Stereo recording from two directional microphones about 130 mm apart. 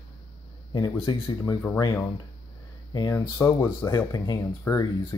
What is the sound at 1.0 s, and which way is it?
Speech, 35° left (ahead or behind).